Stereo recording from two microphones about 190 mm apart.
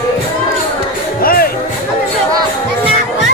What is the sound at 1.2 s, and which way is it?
Music, 50° left (ahead or behind).